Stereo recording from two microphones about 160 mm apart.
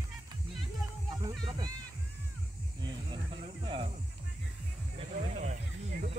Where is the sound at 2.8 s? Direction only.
30° right (ahead or behind).